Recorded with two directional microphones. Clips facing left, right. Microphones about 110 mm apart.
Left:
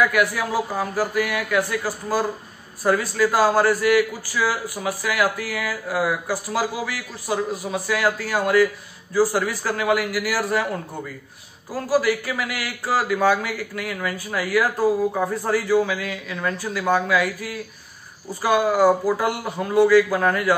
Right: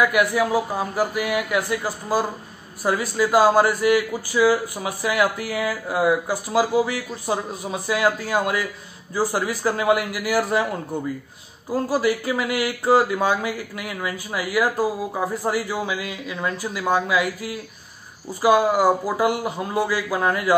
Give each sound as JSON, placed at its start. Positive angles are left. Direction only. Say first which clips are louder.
{"t": 0.1, "sound": "a man's voice", "louder": "right 2 dB", "side_deg": -20}
{"t": 11.7, "sound": "a man's voice", "louder": "even", "side_deg": -25}